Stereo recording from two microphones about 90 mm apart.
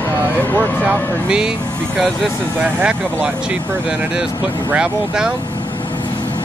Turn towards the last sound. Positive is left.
turn(degrees=-10)  # may be behind; listen again after turning